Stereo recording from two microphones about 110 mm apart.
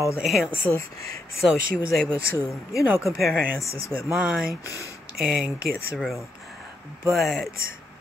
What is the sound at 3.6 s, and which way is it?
Speech, 30° left (ahead or behind).